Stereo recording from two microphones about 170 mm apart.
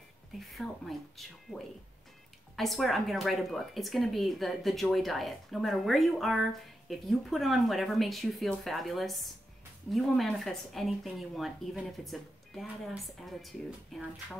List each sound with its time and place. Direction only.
0.4 s speech: centre (ahead or behind)